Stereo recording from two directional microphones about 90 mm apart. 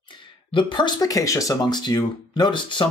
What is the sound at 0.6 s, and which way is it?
Speech, 60° left (ahead or behind).